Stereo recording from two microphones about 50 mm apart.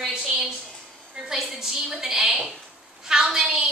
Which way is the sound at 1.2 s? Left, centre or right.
Centre.